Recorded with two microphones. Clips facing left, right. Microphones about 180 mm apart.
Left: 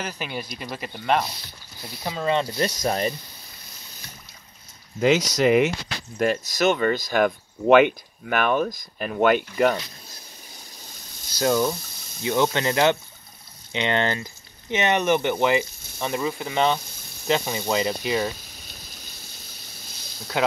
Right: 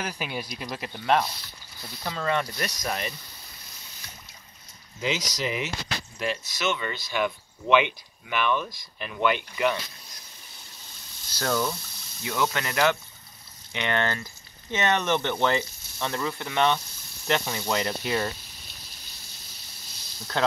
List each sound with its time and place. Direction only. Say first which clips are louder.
0.0 s speech: left 1 dB; 5° right (ahead or behind)
2.0 s speech: left 4 dB; 20° left (ahead or behind); by 3.2 s 35° left (ahead or behind)
5.4 s speech: left 12 dB; 55° left (ahead or behind)
11.3 s speech: left 6 dB; 20° left (ahead or behind); by 18.3 s centre (ahead or behind)
20.4 s speech: left 2 dB; 10° left (ahead or behind)